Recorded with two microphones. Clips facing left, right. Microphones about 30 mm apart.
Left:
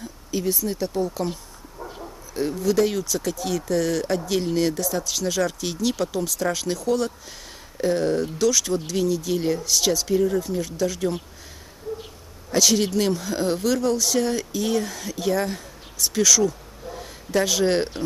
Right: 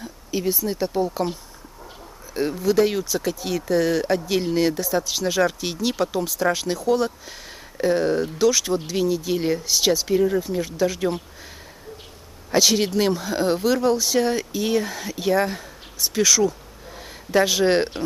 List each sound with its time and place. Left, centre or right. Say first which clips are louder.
0.0 s a sound: right 1 dB; centre
0.7 s speech: right 2 dB; centre
2.3 s speech: right 2 dB; centre
12.4 s speech: right 1 dB; centre